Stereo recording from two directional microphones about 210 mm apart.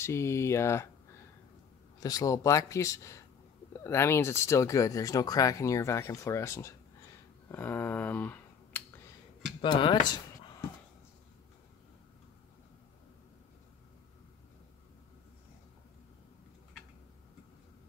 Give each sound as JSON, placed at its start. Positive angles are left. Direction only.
{"t": 0.0, "sound": "speech", "side_deg": 15}
{"t": 2.0, "sound": "speech", "side_deg": 15}
{"t": 7.4, "sound": "a sound", "side_deg": 10}
{"t": 9.6, "sound": "speech", "side_deg": 25}